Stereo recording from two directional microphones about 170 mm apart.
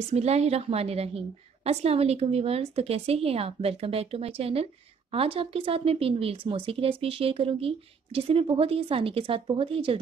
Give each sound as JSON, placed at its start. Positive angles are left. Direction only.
{"t": 0.1, "sound": "speech", "side_deg": -40}